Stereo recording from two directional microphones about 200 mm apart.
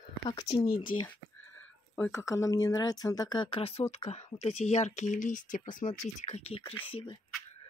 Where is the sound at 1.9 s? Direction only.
15° left (ahead or behind).